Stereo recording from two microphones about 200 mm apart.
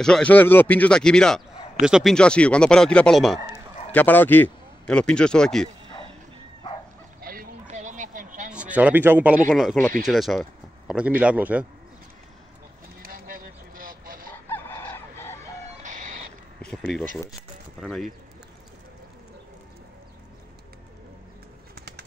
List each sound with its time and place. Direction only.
0.0 s a man's voice: 5° left (ahead or behind)
7.2 s a sound: 45° right (ahead or behind)
8.5 s a man's voice: 5° right (ahead or behind)
13.0 s a sound: 45° right (ahead or behind)
14.5 s fowl: 10° left (ahead or behind)
15.8 s chicken: 40° right (ahead or behind)
16.6 s speech: centre (ahead or behind)